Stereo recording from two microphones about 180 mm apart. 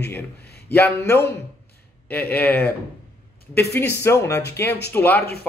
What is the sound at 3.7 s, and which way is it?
Speech, 15° left (ahead or behind).